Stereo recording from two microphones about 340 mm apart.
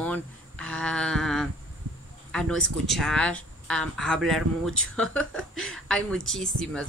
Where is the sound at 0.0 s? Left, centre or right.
Centre.